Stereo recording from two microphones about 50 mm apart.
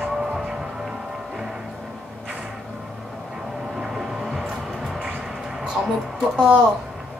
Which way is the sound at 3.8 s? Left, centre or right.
Centre.